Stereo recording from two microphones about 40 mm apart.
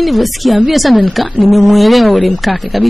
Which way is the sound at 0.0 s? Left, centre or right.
Centre.